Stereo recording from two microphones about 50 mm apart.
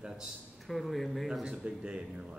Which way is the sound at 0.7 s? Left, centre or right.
Centre.